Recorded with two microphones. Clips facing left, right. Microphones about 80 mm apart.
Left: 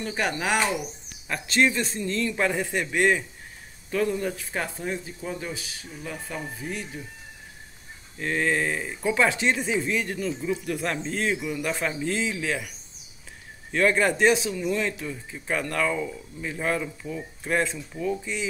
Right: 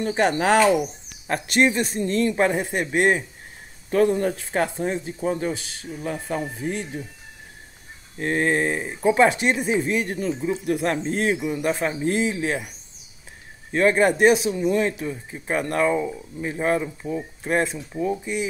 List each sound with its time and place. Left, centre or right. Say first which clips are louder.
0.0 s speech: right 7 dB; right
0.6 s speech: right 8 dB; right
1.5 s speech: right 3 dB; right
8.2 s speech: right 4 dB; right
14.1 s speech: right 4 dB; right
14.5 s speech: right 5 dB; right